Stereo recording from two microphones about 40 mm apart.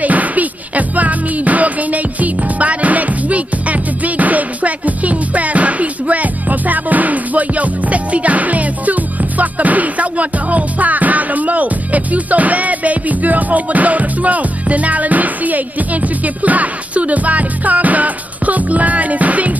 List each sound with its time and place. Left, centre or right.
0.0 s music: right